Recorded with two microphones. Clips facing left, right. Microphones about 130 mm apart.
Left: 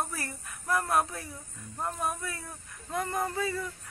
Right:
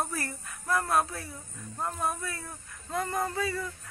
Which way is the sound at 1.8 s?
25° right (ahead or behind).